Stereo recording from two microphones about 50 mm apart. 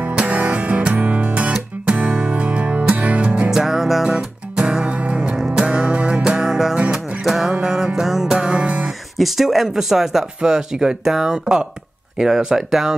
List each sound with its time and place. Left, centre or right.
0.0 s music: right
3.4 s music: centre
4.8 s music: right
8.8 s speech: centre